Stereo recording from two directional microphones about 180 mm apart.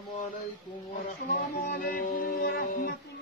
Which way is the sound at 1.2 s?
45° left (ahead or behind).